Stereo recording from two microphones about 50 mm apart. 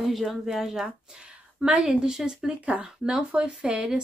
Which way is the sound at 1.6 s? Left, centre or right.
Centre.